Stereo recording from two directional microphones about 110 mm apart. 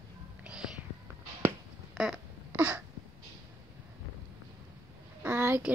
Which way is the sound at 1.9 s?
5° right (ahead or behind).